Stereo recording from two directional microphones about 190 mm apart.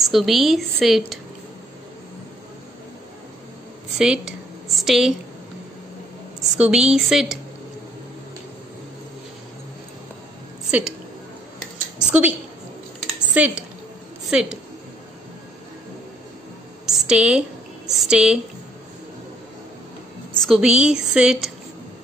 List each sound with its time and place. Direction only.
0.0 s a woman's voice: centre (ahead or behind)
4.0 s a woman's voice: 5° right (ahead or behind)
6.6 s a woman's voice: 5° right (ahead or behind)
12.0 s a woman's voice: 5° right (ahead or behind)
13.0 s a sound: 5° right (ahead or behind)
14.3 s a woman's voice: 5° right (ahead or behind)
16.8 s a sound: centre (ahead or behind)
20.4 s a woman's voice: centre (ahead or behind)